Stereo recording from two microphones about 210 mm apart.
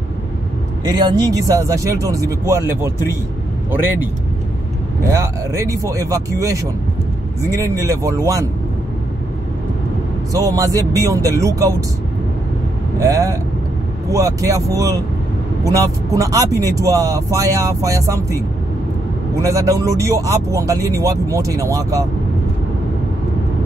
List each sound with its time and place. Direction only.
0.8 s speech: 20° right (ahead or behind)
5.0 s speech: 15° right (ahead or behind)
7.5 s speech: 15° right (ahead or behind)
10.3 s speech: 15° right (ahead or behind)
13.0 s speech: 15° right (ahead or behind)
19.4 s speech: 15° right (ahead or behind)